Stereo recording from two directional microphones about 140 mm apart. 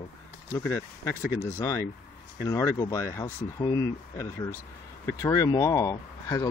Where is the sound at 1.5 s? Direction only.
20° left (ahead or behind).